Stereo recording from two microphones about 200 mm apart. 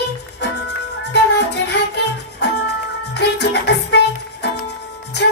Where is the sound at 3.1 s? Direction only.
55° left (ahead or behind).